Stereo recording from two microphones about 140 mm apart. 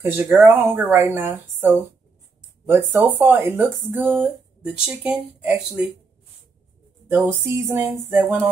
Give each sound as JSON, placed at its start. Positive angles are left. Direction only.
{"t": 0.0, "sound": "speech", "side_deg": -15}
{"t": 7.4, "sound": "speech", "side_deg": -20}